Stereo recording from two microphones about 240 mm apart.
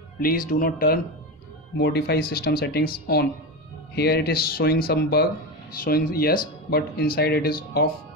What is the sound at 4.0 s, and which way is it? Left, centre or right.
Speech, left.